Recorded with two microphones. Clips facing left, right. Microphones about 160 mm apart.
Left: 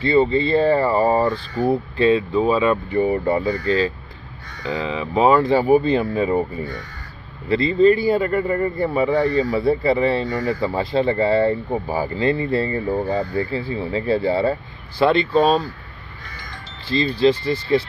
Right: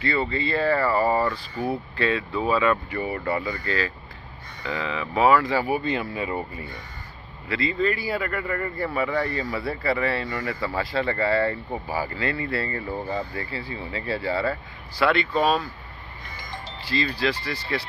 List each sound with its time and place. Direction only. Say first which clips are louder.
0.0 s speech: left 9 dB; 25° left (ahead or behind)
3.6 s speech: left 8 dB; 25° left (ahead or behind)
16.9 s speech: left 8 dB; 25° left (ahead or behind)